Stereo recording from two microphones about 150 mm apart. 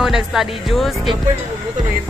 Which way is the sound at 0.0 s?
Centre (ahead or behind).